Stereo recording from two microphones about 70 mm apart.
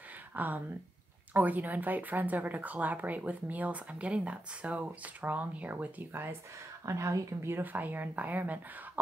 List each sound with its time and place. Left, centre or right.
0.3 s speech: right
6.9 s speech: right
7.5 s speech: right